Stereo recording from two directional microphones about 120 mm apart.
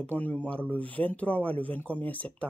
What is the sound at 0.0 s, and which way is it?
Speech, 15° left (ahead or behind).